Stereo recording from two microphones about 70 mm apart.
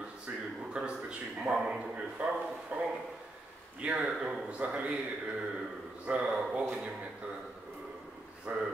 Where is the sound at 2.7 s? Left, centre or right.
Right.